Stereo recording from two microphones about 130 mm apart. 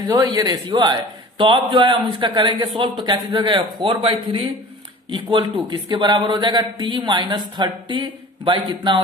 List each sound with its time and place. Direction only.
0.0 s a man's voice: 30° right (ahead or behind)